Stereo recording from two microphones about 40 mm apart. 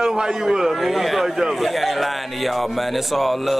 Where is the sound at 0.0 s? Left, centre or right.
Centre.